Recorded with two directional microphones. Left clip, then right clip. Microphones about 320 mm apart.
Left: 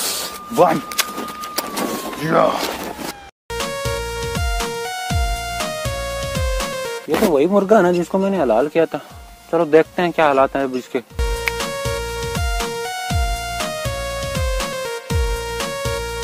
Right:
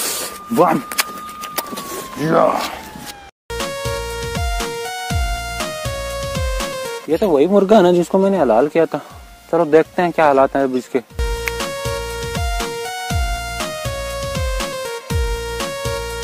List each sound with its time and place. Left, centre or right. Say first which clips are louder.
0.6 s speech: even; right
2.2 s speech: right 2 dB; right
3.5 s music: even; centre
7.3 s speech: right 2 dB; right
11.4 s music: left 1 dB; centre